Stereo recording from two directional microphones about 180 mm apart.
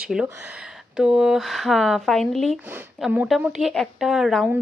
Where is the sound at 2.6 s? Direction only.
10° right (ahead or behind).